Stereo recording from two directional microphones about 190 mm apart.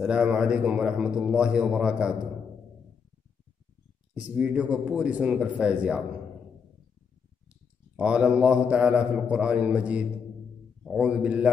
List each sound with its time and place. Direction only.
0.0 s a man's voice: 5° right (ahead or behind)
4.1 s a man's voice: 5° right (ahead or behind)
7.9 s a man's voice: 5° right (ahead or behind)